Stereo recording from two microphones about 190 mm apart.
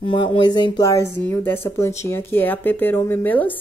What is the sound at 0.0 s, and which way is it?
Speech, 25° left (ahead or behind).